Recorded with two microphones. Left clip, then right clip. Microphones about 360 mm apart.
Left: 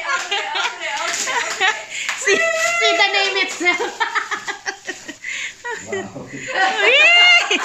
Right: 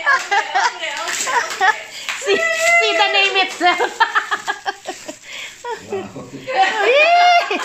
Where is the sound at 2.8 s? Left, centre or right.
Centre.